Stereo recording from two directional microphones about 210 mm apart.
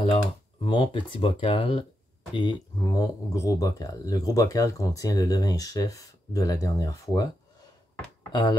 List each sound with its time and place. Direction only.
0.7 s speech: 25° left (ahead or behind)
8.3 s speech: 20° left (ahead or behind)